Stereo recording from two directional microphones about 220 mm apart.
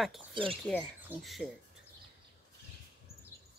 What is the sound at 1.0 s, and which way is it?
Speech, centre (ahead or behind).